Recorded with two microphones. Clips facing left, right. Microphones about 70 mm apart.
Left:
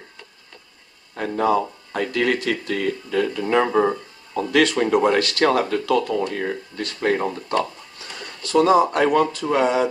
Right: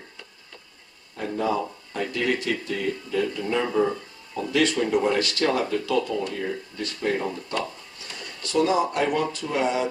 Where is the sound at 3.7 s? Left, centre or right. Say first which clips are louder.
Left 4 dB; left.